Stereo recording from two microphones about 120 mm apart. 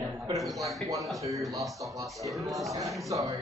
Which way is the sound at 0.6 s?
Centre (ahead or behind).